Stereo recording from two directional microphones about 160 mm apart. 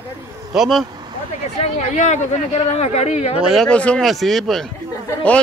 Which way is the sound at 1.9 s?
50° left (ahead or behind).